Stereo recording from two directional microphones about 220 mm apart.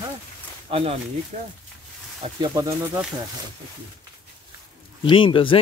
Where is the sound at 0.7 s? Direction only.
25° right (ahead or behind).